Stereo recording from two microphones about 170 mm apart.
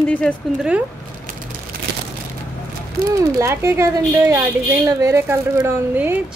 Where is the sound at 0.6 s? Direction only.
5° right (ahead or behind).